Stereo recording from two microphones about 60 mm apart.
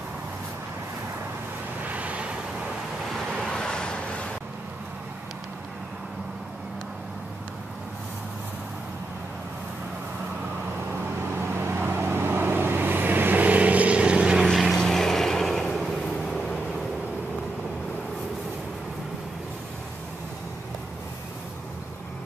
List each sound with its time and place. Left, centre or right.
1.8 s vehicle: right
3.1 s waves: centre
3.3 s vehicle: centre
11.3 s vehicle: right; by 14.4 s centre
14.4 s vehicle: centre
14.8 s a sound: centre